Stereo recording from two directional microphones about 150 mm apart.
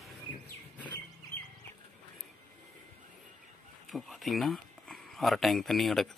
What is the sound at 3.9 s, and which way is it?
Speech, centre (ahead or behind).